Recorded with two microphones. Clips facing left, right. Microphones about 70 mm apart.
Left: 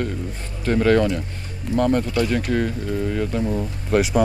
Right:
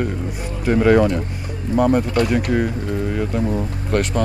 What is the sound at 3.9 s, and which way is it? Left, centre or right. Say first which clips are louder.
Speech: left 2 dB; centre.